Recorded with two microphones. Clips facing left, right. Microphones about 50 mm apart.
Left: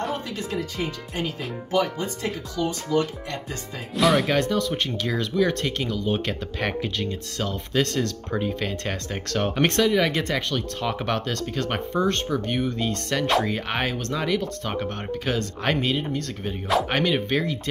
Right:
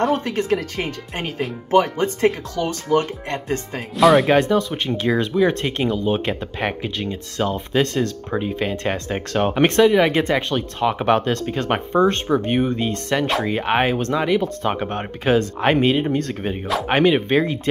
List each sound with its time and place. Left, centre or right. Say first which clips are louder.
0.0 s speech: right 9 dB; right
3.9 s speech: right 7 dB; centre
4.3 s speech: right 6 dB; right